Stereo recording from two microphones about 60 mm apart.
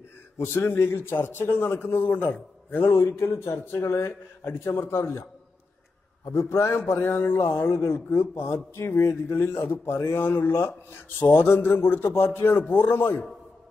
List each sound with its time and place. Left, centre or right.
0.4 s a man's voice: left
2.8 s a man's voice: left
6.3 s a man's voice: left